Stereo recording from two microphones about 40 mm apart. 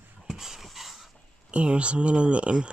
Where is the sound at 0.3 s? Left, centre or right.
Centre.